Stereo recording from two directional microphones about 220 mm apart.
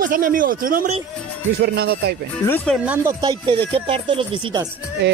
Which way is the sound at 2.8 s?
15° right (ahead or behind).